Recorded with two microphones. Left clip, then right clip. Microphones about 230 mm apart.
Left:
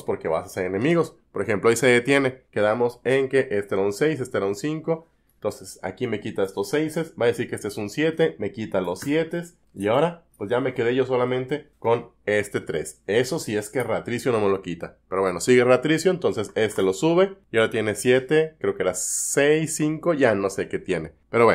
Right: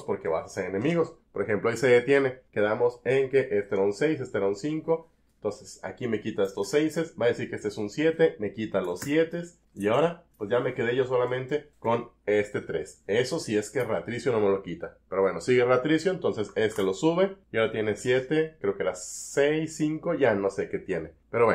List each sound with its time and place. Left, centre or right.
0.0 s speech: left